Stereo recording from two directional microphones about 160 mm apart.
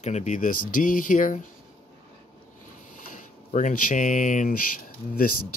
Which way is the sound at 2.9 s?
55° left (ahead or behind).